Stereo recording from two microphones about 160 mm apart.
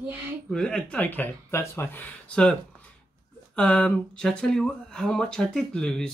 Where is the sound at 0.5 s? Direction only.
5° left (ahead or behind).